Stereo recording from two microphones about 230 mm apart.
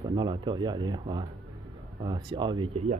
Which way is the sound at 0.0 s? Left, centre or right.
Centre.